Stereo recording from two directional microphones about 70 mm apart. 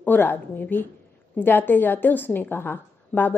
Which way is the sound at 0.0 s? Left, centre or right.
Left.